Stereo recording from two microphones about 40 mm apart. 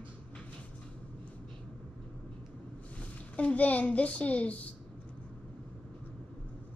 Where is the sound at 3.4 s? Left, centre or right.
Left.